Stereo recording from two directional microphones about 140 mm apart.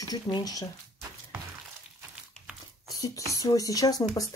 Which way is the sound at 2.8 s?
25° left (ahead or behind).